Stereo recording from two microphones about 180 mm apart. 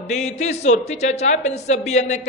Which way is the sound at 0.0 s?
40° left (ahead or behind).